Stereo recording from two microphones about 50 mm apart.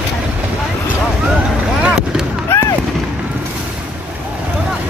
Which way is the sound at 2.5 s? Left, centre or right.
Left.